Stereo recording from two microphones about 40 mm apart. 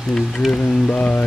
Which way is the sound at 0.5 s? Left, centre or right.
Left.